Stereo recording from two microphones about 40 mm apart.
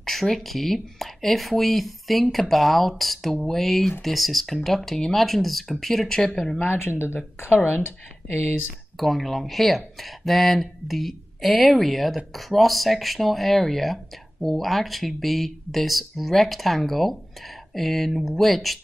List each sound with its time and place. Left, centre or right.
0.0 s speech: centre
7.3 s speech: left
8.9 s speech: centre